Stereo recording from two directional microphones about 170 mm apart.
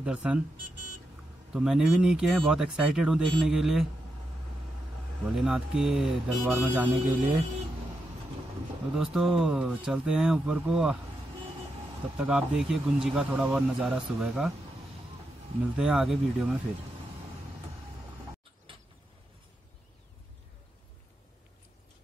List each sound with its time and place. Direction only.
0.0 s speech: 5° right (ahead or behind)
1.5 s speech: 5° right (ahead or behind)
5.3 s speech: 5° right (ahead or behind)
8.9 s speech: 5° right (ahead or behind)
12.2 s speech: 5° right (ahead or behind)
15.8 s speech: centre (ahead or behind)
18.7 s vehicle: 30° right (ahead or behind)